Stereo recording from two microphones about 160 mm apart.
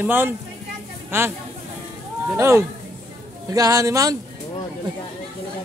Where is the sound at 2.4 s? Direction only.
15° right (ahead or behind).